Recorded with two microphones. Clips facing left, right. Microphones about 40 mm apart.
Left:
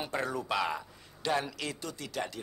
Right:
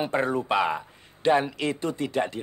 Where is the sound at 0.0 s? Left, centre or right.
Right.